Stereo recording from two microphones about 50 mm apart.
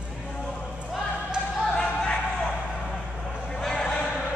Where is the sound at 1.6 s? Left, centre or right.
Centre.